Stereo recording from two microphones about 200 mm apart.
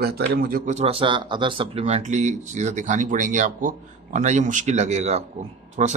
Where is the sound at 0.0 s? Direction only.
50° right (ahead or behind).